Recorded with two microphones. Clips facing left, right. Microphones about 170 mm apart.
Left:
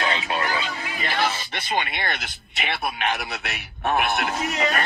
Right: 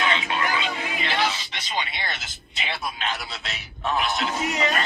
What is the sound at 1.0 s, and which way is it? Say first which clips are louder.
Speech: left 2 dB; 50° left (ahead or behind).